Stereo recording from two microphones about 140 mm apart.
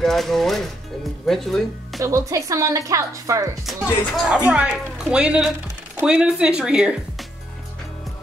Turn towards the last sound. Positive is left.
turn(degrees=-5)  # may be behind; listen again after turning